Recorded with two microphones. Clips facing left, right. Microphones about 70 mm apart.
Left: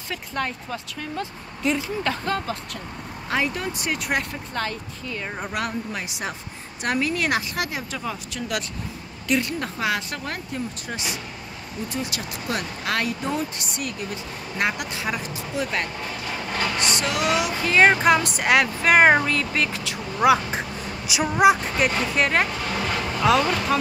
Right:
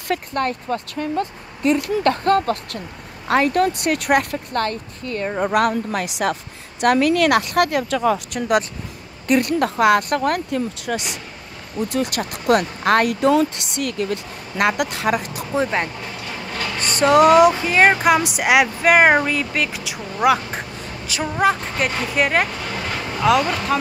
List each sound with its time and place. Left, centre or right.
0.1 s speech: right
11.9 s speech: right
13.1 s speech: right
15.5 s speech: right
16.9 s speech: right
17.6 s speech: centre
21.7 s speech: centre